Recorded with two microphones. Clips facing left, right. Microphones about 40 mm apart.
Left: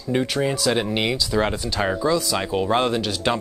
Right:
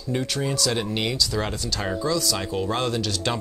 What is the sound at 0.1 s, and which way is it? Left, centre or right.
Speech, left.